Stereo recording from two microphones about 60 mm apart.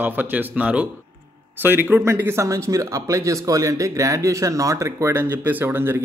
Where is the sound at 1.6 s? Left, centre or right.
Right.